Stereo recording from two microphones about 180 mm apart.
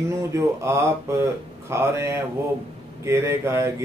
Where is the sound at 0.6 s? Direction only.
15° right (ahead or behind).